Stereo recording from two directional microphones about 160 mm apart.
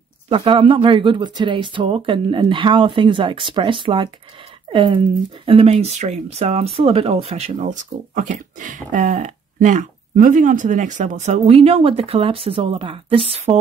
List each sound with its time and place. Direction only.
0.3 s speech: 35° right (ahead or behind)